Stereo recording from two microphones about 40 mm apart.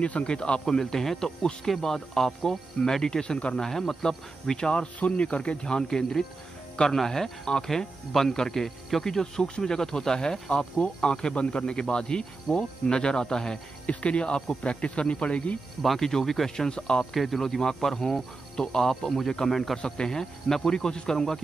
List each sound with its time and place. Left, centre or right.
0.0 s speech: left
3.6 s speech: centre
13.8 s speech: left
16.0 s speech: centre
17.0 s speech: centre
19.8 s speech: centre